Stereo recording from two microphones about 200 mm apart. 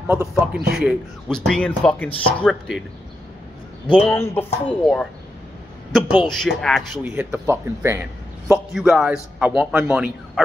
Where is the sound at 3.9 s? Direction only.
10° left (ahead or behind).